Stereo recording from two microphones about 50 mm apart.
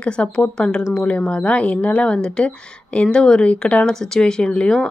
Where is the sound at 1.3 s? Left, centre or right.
Left.